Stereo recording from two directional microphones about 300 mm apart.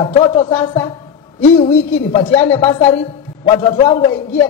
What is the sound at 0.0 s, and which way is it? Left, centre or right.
Speech, centre.